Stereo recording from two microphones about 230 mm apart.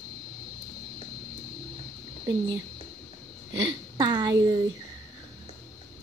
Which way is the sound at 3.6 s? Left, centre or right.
Centre.